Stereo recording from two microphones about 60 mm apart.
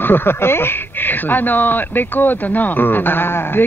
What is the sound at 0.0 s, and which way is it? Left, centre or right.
Speech, left.